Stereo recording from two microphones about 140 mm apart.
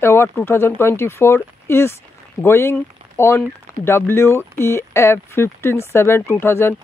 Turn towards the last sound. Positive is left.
turn(degrees=15)  # may be behind; listen again after turning